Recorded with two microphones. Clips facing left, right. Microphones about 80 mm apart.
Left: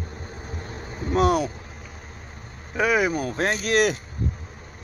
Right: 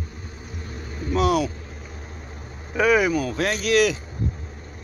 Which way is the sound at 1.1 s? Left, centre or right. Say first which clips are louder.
Even; left.